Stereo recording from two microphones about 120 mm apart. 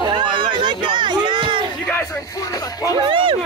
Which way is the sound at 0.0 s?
40° right (ahead or behind).